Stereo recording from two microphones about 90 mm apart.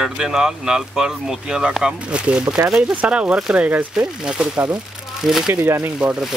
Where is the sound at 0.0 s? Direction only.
5° right (ahead or behind).